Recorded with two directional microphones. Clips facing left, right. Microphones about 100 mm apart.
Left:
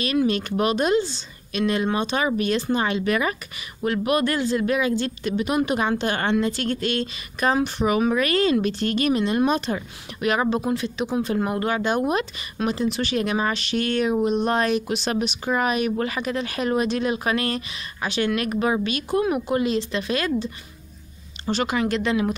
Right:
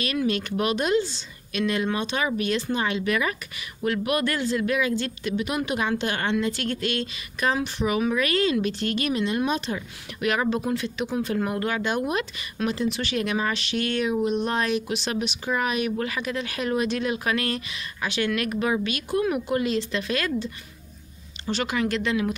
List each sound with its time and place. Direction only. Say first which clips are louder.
0.0 s speech: left 4 dB; 30° left (ahead or behind)
10.2 s speech: left 2 dB; 30° left (ahead or behind)
21.5 s speech: left 3 dB; 40° left (ahead or behind)
21.7 s speech: left 1 dB; 30° left (ahead or behind)